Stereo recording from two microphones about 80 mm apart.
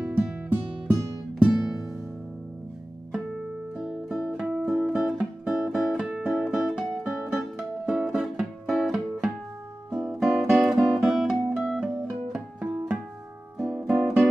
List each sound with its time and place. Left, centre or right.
0.0 s music: centre
1.5 s music: centre
3.1 s music: centre